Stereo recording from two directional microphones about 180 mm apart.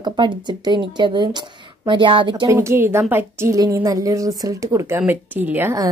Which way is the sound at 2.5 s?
15° right (ahead or behind).